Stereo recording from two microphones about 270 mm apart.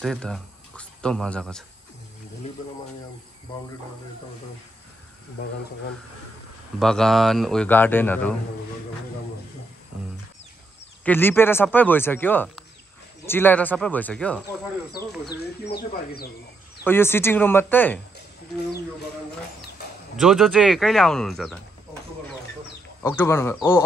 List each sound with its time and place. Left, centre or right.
0.0 s speech: centre
6.8 s speech: centre
11.1 s speech: centre
14.9 s speech: left
16.8 s speech: centre
20.2 s speech: centre
23.0 s speech: centre